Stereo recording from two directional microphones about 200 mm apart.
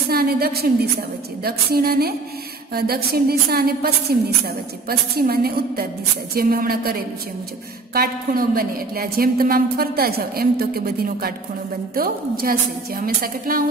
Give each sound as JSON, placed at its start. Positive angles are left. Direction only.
{"t": 0.1, "sound": "a woman's voice", "side_deg": -50}